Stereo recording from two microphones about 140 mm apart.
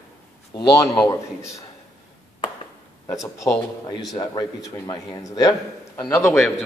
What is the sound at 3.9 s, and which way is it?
A man's voice, 30° left (ahead or behind).